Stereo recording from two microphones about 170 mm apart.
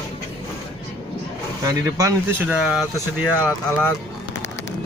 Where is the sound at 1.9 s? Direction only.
20° right (ahead or behind).